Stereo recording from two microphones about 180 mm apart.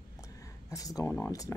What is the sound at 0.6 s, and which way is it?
Speech, 20° left (ahead or behind).